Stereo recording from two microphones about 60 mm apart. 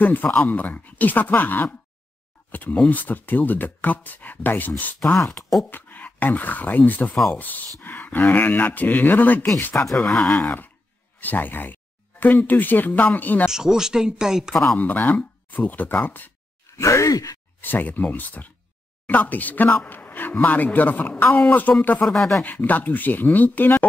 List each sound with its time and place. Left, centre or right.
0.0 s speech: left
5.0 s speech: centre
5.7 s speech: left
9.9 s speech: centre
13.5 s speech: centre
14.8 s speech: left
16.7 s sigh: left
17.6 s speech: left
22.0 s speech: centre
22.4 s speech: left